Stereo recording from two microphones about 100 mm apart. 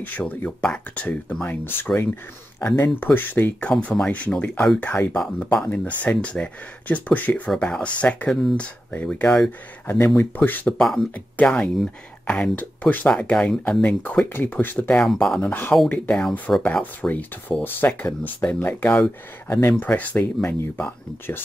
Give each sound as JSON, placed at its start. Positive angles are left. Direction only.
{"t": 0.0, "sound": "speech", "side_deg": 15}
{"t": 3.7, "sound": "speech", "side_deg": 5}
{"t": 10.8, "sound": "speech", "side_deg": 5}
{"t": 11.1, "sound": "speech", "side_deg": 15}
{"t": 14.0, "sound": "speech", "side_deg": 20}
{"t": 14.9, "sound": "speech", "side_deg": 5}